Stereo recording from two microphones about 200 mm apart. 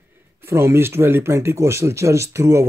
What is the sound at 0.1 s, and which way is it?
Speech, 10° right (ahead or behind).